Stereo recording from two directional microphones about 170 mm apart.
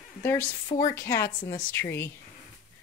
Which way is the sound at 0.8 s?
15° left (ahead or behind).